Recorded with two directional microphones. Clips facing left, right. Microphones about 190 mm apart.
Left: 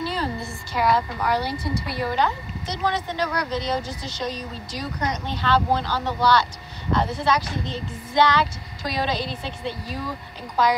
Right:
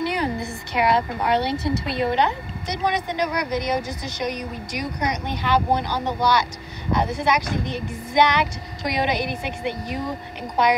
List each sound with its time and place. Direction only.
0.0 s a woman's voice: 15° right (ahead or behind)